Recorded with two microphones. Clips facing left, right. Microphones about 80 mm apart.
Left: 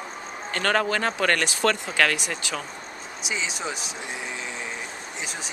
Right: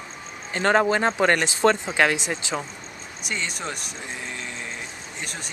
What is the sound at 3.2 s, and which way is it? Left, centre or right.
Speech, centre.